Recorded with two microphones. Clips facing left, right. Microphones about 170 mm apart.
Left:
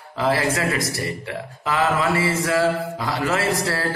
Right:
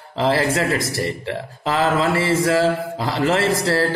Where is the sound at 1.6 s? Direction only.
30° right (ahead or behind).